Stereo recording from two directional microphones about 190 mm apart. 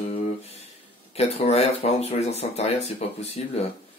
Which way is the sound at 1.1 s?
35° left (ahead or behind).